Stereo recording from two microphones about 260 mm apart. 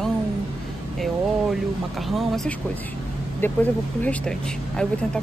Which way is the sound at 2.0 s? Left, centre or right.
Centre.